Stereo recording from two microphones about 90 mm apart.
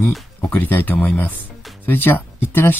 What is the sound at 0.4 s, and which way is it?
Speech, 20° left (ahead or behind).